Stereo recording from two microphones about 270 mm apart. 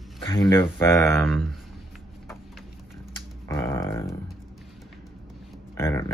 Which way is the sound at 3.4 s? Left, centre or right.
Centre.